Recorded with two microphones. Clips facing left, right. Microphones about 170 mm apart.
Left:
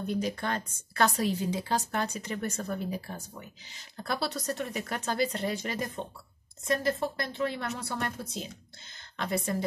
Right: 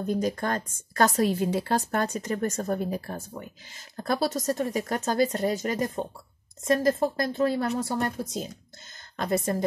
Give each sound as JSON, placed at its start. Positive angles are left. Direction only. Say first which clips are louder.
{"t": 0.0, "sound": "speech", "louder": "right 4 dB", "side_deg": -45}
{"t": 9.1, "sound": "speech", "louder": "right 5 dB", "side_deg": -45}